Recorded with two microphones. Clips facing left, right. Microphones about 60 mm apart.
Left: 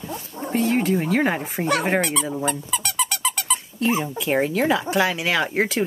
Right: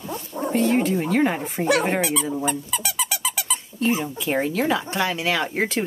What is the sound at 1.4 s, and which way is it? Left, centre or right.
Speech, centre.